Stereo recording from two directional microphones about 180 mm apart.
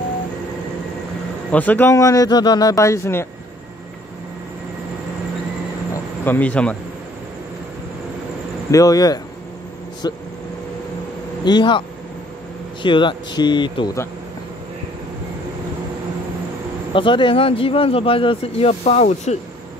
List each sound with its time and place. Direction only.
1.5 s speech: 10° left (ahead or behind)
6.2 s speech: 10° left (ahead or behind)
8.7 s speech: 20° left (ahead or behind)
11.4 s speech: 25° left (ahead or behind)
12.8 s speech: 25° left (ahead or behind)
16.9 s speech: 30° left (ahead or behind)